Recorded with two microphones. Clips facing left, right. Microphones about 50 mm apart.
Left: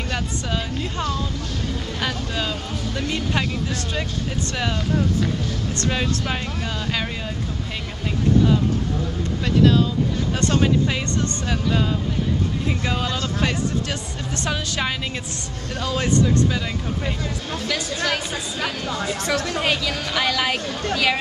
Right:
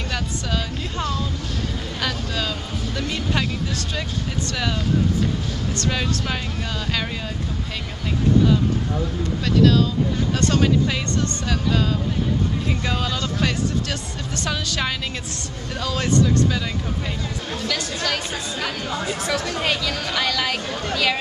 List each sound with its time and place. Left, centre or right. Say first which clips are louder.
2.0 s vehicle: even; centre
3.0 s speech: even; centre
5.9 s speech: left 1 dB; centre
9.6 s speech: even; left
12.8 s speech: even; centre
17.6 s speech: left 2 dB; centre
18.9 s speech: even; centre